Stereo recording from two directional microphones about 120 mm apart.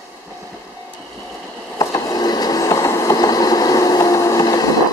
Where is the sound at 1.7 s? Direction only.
30° left (ahead or behind).